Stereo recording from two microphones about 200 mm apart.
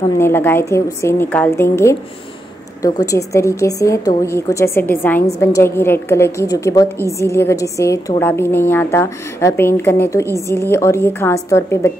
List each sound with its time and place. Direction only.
0.2 s a woman's voice: 10° left (ahead or behind)